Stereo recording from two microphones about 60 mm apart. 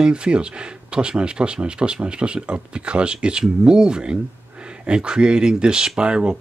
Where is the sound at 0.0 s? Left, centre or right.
Centre.